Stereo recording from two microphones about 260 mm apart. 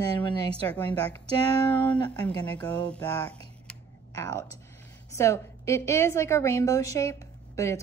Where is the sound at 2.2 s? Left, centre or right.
Centre.